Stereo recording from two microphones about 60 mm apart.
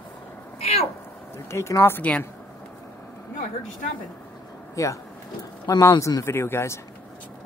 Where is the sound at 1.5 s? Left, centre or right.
Left.